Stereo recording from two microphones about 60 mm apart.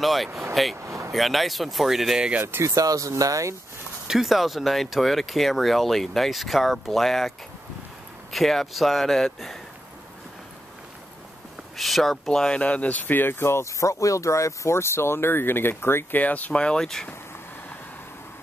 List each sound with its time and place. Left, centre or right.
0.0 s speech: centre
0.3 s speech: right
0.8 s a sound: right
1.1 s speech: centre
2.4 s speech: right
2.7 s speech: right
4.1 s speech: centre
11.7 s speech: centre; by 13.7 s left
13.7 s speech: left
16.2 s speech: left; by 17.1 s centre